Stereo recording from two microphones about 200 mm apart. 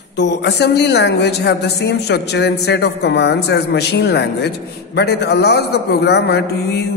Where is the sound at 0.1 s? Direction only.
60° left (ahead or behind).